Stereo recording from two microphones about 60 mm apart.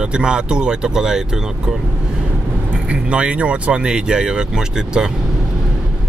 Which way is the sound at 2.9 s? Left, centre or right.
Centre.